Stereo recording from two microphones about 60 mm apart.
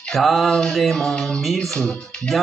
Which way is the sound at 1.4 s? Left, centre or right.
Centre.